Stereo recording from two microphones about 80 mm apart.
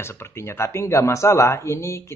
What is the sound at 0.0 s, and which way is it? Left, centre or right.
Speech, left.